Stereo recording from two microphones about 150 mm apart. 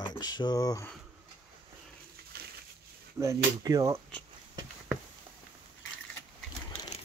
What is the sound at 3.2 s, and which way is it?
Speech, 20° right (ahead or behind).